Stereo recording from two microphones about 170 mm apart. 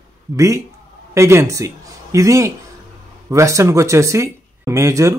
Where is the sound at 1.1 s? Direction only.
15° right (ahead or behind).